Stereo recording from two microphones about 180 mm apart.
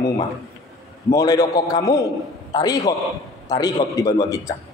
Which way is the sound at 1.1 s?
20° left (ahead or behind).